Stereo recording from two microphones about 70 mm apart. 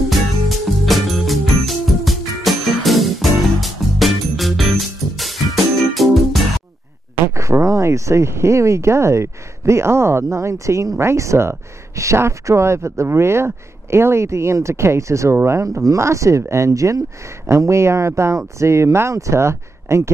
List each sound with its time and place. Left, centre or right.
0.1 s music: centre
7.3 s speech: right
15.8 s speech: right